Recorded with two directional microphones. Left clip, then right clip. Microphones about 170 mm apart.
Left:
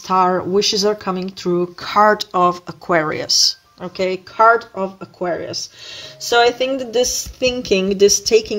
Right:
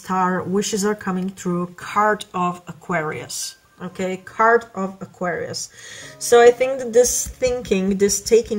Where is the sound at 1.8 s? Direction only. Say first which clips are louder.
Left 5 dB; 50° left (ahead or behind); by 4.7 s 30° left (ahead or behind).